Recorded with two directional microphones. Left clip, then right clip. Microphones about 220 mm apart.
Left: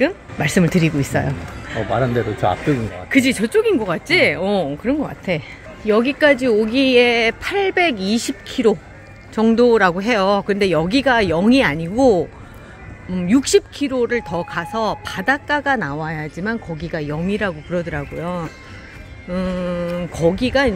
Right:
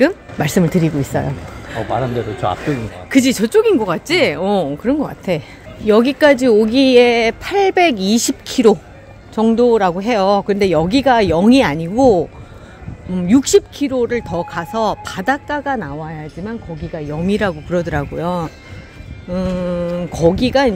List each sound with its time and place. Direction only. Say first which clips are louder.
0.0 s speech: right 4 dB; 15° right (ahead or behind)
1.8 s speech: even; 35° left (ahead or behind)
3.1 s a woman's voice: right 2 dB; 15° right (ahead or behind)
9.3 s speech: right 1 dB; centre (ahead or behind)
15.9 s speech: left 2 dB; 10° left (ahead or behind)
17.2 s a woman's voice: right 8 dB; 20° right (ahead or behind)